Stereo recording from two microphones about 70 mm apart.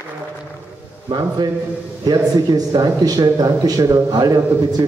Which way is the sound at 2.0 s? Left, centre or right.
Right.